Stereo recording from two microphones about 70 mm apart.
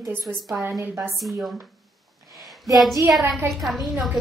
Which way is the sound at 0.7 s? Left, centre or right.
Right.